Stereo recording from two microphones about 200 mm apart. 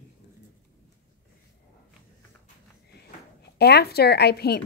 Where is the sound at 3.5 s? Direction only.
55° left (ahead or behind).